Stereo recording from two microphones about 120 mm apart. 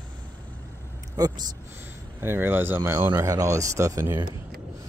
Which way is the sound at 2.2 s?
20° right (ahead or behind).